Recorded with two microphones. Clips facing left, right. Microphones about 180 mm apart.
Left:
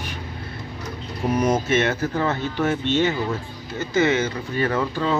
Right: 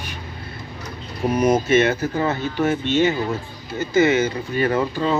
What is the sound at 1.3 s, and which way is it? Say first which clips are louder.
Speech: right 4 dB; 10° right (ahead or behind).